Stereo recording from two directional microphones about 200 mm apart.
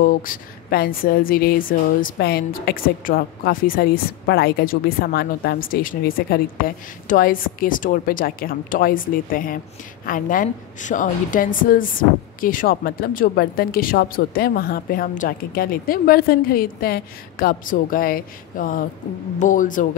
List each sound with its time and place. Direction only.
0.0 s a woman's voice: 45° left (ahead or behind)